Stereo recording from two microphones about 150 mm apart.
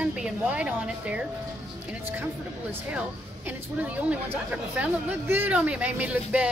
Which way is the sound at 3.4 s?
10° right (ahead or behind).